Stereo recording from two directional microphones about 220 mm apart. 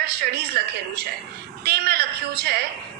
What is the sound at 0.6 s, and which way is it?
Speech, 45° right (ahead or behind).